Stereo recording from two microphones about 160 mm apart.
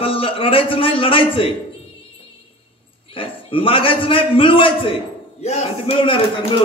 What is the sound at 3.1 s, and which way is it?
A man's voice, 35° left (ahead or behind).